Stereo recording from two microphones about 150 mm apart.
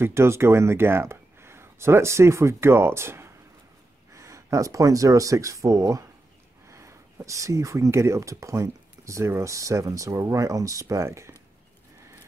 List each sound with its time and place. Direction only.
0.0 s speech: 15° right (ahead or behind)